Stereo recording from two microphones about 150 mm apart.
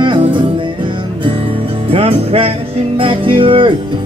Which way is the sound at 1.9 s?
40° right (ahead or behind).